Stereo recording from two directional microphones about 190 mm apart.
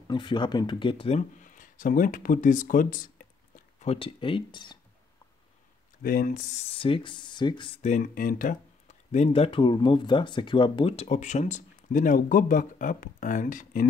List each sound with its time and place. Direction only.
0.1 s speech: 25° left (ahead or behind); by 3.0 s 45° left (ahead or behind)
3.8 s speech: 30° left (ahead or behind)
6.0 s speech: 45° left (ahead or behind); by 7.8 s 25° left (ahead or behind)
7.8 s speech: 45° left (ahead or behind)